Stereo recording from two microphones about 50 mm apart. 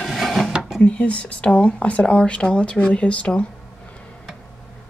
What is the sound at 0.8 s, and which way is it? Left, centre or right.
Speech, left.